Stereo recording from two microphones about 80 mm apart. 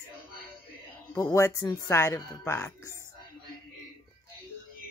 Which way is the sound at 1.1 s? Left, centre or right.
Left.